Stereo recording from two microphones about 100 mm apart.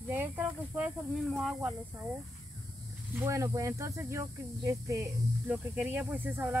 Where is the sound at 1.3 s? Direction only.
5° right (ahead or behind).